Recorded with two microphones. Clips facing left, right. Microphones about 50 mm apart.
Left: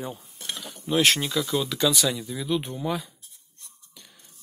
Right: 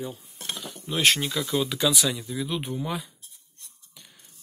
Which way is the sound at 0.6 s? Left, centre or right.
Centre.